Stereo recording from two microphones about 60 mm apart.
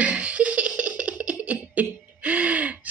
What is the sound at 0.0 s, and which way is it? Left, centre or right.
Music, right.